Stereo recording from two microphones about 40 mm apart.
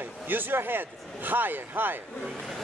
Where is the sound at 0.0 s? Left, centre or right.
Right.